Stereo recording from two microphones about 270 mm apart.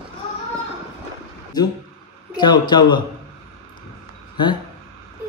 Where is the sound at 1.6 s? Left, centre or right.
Centre.